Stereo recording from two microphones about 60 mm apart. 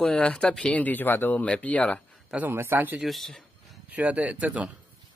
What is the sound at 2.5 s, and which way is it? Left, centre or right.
Speech, right.